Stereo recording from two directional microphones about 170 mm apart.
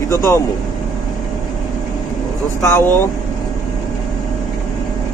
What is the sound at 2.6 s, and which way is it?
Speech, 15° left (ahead or behind).